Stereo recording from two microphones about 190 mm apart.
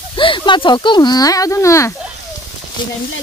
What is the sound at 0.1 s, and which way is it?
Speech, 25° left (ahead or behind).